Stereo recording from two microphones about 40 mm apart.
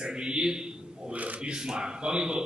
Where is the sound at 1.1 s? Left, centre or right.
Right.